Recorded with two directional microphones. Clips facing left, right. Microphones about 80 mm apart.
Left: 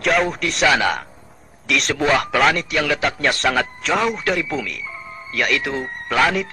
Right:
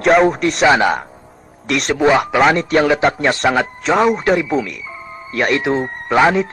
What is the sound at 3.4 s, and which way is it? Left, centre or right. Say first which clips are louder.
Speech: right 4 dB; right.